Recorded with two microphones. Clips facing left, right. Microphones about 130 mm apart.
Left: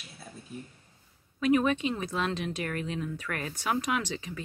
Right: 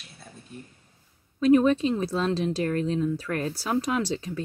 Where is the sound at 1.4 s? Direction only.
30° right (ahead or behind).